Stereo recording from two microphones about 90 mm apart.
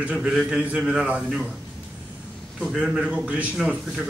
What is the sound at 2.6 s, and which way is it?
Speech, 5° right (ahead or behind).